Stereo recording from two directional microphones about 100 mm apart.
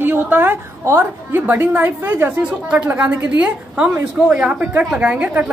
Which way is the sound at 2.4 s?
10° right (ahead or behind).